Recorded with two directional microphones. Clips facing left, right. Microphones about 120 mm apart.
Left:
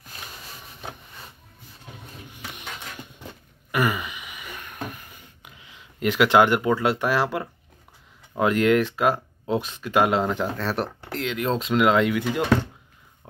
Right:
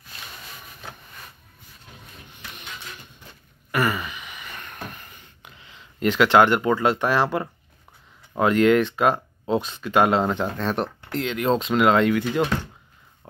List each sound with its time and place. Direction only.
0.7 s train: 20° left (ahead or behind)
3.7 s a sound: 15° left (ahead or behind)
8.4 s speech: 5° left (ahead or behind)